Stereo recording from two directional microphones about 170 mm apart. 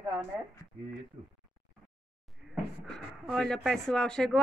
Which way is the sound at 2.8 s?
5° left (ahead or behind).